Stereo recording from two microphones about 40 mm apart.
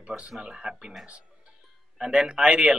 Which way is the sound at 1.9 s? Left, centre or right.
Right.